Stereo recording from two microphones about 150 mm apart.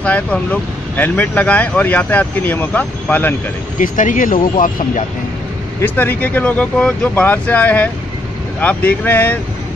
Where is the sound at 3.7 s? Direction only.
60° left (ahead or behind).